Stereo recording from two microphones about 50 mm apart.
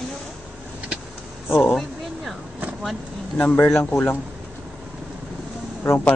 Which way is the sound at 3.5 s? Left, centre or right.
Left.